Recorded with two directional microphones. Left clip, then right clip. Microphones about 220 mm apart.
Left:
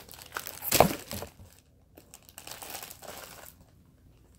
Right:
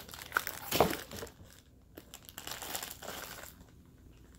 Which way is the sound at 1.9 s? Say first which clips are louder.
Right 2 dB; 5° right (ahead or behind).